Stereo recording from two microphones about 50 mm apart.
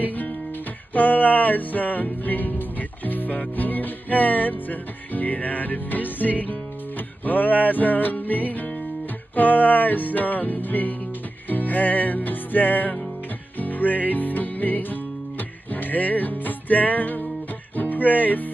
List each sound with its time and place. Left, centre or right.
0.0 s guitar: left
0.9 s music: left